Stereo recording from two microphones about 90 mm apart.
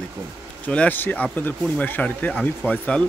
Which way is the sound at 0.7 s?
15° left (ahead or behind).